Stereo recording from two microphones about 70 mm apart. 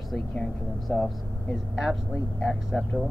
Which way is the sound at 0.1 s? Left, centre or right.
Centre.